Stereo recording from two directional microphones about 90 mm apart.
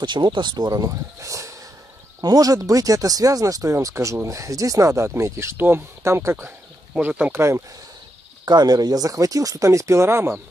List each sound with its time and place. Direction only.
0.0 s speech: 55° right (ahead or behind); by 6.5 s 30° right (ahead or behind)
6.9 s speech: 15° right (ahead or behind)
7.3 s speech: 30° right (ahead or behind)
8.5 s speech: 50° right (ahead or behind); by 10.4 s 30° right (ahead or behind)